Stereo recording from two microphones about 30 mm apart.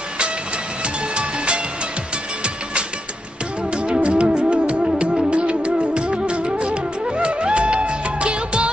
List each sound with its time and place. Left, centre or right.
1.1 s music: right
3.7 s music: right